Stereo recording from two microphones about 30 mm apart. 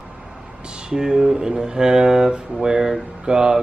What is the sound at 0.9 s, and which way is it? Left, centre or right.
Speech, right.